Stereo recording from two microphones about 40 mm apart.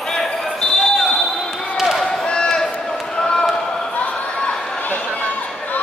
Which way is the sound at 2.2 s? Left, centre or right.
Left.